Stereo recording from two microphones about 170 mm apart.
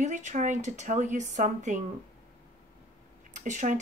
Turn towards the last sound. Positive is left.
turn(degrees=-45)  # may be behind; listen again after turning